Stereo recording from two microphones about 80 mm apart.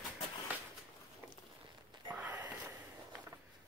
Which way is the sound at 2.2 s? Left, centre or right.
Right.